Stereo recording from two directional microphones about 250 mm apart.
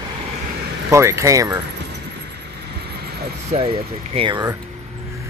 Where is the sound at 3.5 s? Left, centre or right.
Right.